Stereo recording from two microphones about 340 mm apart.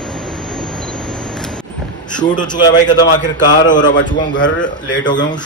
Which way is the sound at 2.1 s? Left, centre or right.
Centre.